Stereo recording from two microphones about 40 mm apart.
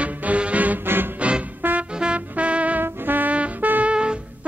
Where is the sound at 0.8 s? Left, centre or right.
Right.